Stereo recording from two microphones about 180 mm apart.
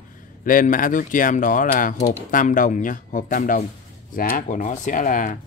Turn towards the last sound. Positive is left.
turn(degrees=45)  # may be behind; listen again after turning